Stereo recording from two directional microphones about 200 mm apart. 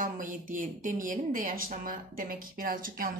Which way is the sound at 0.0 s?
40° right (ahead or behind).